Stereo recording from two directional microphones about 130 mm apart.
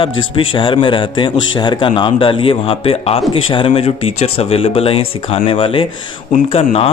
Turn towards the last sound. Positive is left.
turn(degrees=50)  # may be behind; listen again after turning